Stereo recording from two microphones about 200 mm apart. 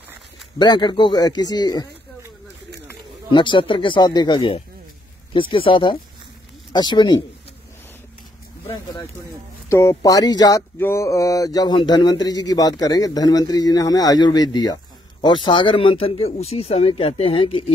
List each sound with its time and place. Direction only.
0.6 s speech: 20° left (ahead or behind)
3.3 s speech: 25° left (ahead or behind)
9.7 s speech: 15° left (ahead or behind)